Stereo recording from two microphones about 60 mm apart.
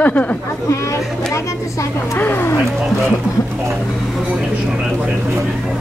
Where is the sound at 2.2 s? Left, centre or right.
Left.